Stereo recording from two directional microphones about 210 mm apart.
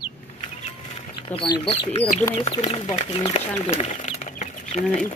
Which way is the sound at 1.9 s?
30° left (ahead or behind).